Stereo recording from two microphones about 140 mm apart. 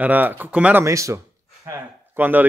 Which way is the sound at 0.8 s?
20° right (ahead or behind).